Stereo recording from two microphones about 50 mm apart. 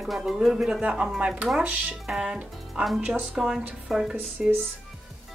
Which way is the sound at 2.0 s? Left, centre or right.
Centre.